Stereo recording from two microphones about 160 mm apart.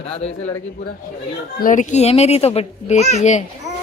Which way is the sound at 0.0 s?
40° left (ahead or behind).